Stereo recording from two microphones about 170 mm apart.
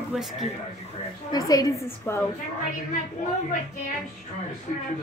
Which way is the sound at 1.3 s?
20° left (ahead or behind).